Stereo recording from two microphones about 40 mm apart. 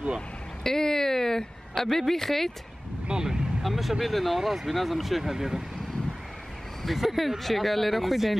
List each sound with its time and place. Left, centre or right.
0.7 s a sound: centre
3.1 s vehicle: centre
3.6 s speech: centre
6.8 s speech: centre